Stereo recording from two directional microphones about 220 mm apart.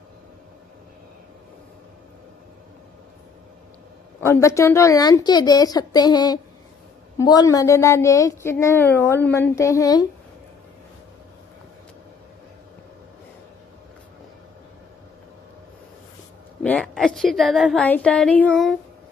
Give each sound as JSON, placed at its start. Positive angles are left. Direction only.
{"t": 4.2, "sound": "a woman's voice", "side_deg": 10}
{"t": 16.6, "sound": "a woman's voice", "side_deg": 5}